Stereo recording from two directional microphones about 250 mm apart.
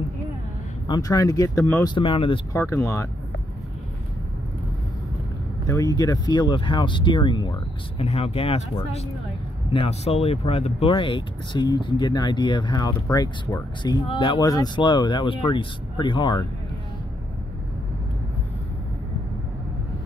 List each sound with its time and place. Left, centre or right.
0.8 s speech: centre
2.0 s speech: left
5.9 s speech: centre